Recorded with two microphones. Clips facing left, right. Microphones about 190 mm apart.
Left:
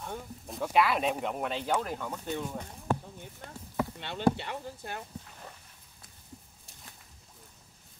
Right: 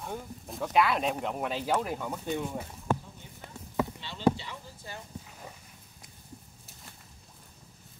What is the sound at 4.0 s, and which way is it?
Speech, 60° left (ahead or behind).